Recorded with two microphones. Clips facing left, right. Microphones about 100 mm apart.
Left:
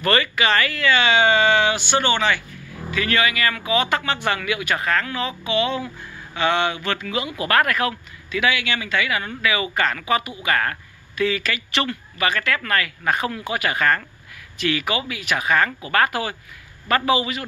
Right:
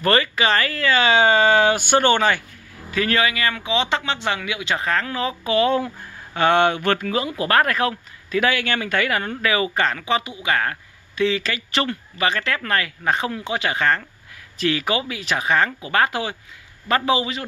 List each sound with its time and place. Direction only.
0.0 s speech: 30° right (ahead or behind)
14.6 s speech: 30° right (ahead or behind)